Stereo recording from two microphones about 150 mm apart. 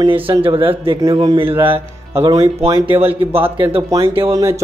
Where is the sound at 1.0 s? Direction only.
25° right (ahead or behind).